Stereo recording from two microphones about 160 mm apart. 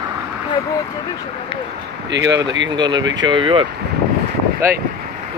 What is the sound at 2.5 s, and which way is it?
Speech, 25° right (ahead or behind).